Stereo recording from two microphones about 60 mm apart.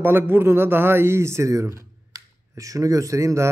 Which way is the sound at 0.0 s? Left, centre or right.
Right.